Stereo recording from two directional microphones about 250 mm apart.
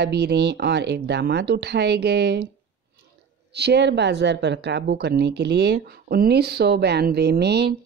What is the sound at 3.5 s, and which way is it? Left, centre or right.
A woman's voice, right.